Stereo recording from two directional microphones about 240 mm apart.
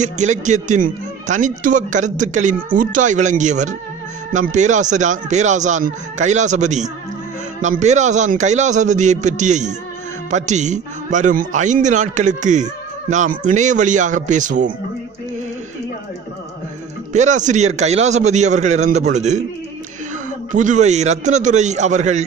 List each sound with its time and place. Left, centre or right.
0.0 s a man's voice: right
17.1 s a man's voice: right
20.5 s a man's voice: right